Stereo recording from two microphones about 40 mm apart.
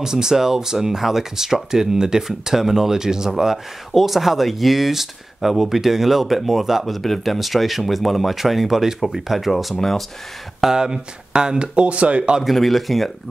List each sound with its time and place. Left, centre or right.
0.0 s speech: centre
10.6 s speech: centre
12.4 s speech: centre